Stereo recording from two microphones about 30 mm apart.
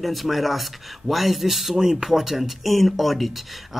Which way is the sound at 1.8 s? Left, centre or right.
Centre.